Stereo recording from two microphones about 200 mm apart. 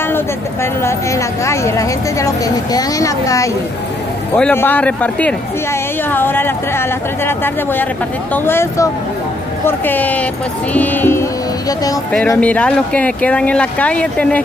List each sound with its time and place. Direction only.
0.8 s speech: 15° left (ahead or behind)